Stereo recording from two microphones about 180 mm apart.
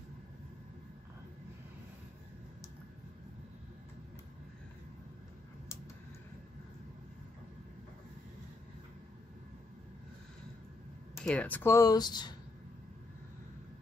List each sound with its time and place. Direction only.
11.2 s speech: 10° left (ahead or behind); by 12.4 s 25° left (ahead or behind)